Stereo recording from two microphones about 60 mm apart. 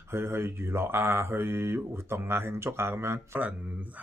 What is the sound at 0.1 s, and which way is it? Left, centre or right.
Mantra, right.